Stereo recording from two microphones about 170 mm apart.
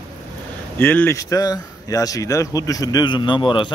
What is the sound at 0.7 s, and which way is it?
Speech, 10° left (ahead or behind).